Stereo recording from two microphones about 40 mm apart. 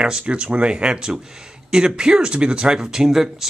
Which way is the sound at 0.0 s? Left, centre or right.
Right.